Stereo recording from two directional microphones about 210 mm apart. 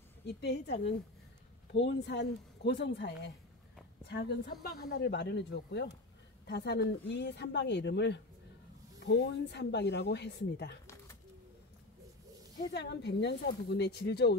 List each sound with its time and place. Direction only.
0.2 s speech: 55° left (ahead or behind)
12.5 s speech: 55° left (ahead or behind)